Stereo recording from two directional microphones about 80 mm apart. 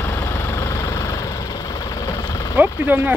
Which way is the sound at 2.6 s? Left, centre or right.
Right.